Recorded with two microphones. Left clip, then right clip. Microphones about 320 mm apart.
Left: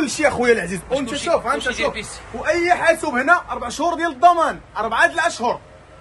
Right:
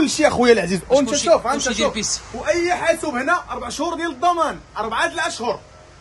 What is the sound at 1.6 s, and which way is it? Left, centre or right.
Speech, centre.